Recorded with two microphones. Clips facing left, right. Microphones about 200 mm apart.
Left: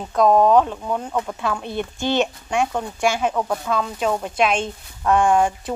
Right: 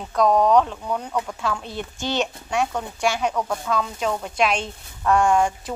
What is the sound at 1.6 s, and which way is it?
Speech, 55° left (ahead or behind).